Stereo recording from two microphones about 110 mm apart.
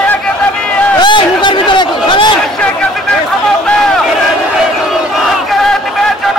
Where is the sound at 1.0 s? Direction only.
45° left (ahead or behind).